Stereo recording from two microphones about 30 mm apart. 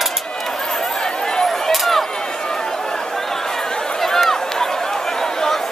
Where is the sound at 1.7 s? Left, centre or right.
Centre.